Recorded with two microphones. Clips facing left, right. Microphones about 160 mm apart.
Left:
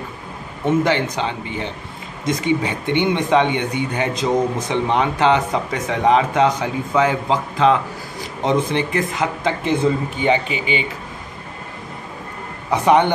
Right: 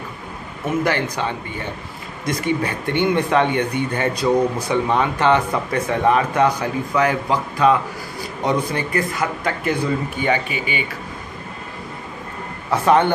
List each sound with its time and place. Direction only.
0.7 s speech: 20° left (ahead or behind)
3.0 s speech: 15° left (ahead or behind)
12.7 s speech: 15° left (ahead or behind)